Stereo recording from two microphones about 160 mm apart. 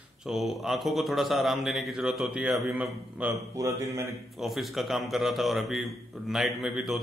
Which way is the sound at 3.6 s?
20° right (ahead or behind).